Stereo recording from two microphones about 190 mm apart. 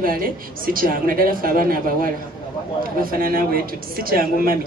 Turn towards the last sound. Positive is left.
turn(degrees=-50)  # may be behind; listen again after turning